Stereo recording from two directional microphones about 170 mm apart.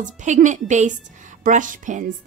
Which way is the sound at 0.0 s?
45° right (ahead or behind).